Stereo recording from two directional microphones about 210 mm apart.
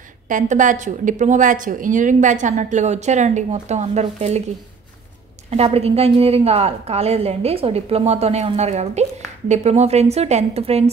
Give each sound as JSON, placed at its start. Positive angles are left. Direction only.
{"t": 0.3, "sound": "a woman's voice", "side_deg": -35}
{"t": 5.5, "sound": "a woman's voice", "side_deg": -30}